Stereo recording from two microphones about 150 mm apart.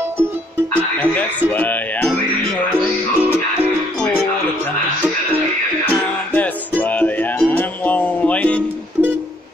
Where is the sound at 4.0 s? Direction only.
10° left (ahead or behind).